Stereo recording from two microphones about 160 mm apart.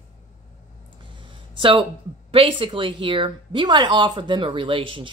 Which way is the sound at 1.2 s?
30° right (ahead or behind).